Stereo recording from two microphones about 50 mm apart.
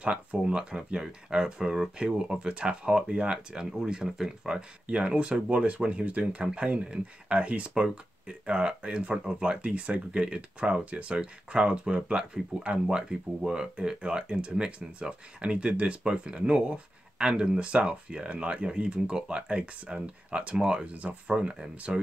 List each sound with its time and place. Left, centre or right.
0.0 s speech: right
20.8 s speech: right